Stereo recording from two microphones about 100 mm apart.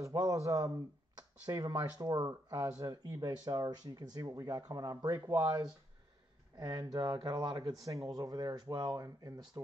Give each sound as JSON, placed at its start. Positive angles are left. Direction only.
{"t": 0.0, "sound": "speech", "side_deg": -35}
{"t": 6.6, "sound": "speech", "side_deg": -40}